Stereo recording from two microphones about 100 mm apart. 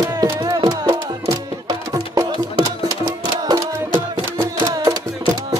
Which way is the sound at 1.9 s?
35° right (ahead or behind).